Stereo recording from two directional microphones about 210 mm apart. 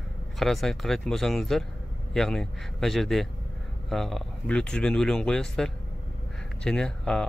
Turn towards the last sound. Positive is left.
turn(degrees=5)  # may be behind; listen again after turning